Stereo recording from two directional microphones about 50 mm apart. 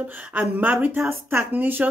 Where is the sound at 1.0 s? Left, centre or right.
Right.